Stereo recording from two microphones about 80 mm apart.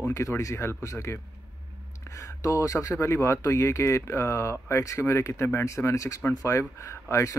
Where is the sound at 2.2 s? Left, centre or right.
Left.